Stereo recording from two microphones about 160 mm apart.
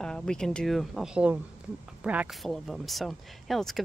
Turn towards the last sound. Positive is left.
turn(degrees=0)  # may be behind; listen again after turning